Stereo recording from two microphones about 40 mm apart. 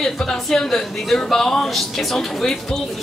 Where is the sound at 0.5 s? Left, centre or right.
Centre.